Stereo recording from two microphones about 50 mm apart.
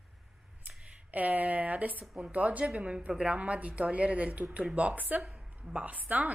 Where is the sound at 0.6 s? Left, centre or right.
Right.